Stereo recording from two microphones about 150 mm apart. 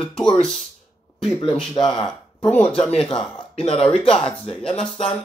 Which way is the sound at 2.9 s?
40° left (ahead or behind).